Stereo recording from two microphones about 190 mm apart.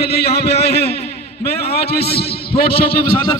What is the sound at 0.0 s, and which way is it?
A man's voice, 60° left (ahead or behind).